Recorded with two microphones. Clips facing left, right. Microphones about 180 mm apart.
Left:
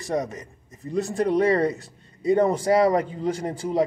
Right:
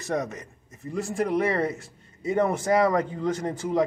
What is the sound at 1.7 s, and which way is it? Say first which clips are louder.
A man's voice: left 1 dB; 35° left (ahead or behind).